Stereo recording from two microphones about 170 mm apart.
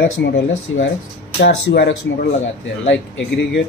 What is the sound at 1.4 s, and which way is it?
Speech, 85° left.